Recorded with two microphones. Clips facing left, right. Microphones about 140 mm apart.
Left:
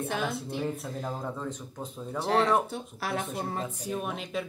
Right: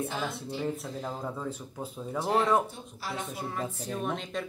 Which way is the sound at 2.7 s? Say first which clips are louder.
Left 5 dB; 65° left (ahead or behind).